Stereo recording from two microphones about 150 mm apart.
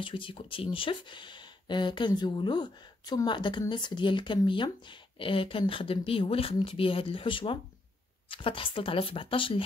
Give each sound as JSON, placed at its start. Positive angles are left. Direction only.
{"t": 0.0, "sound": "speech", "side_deg": 35}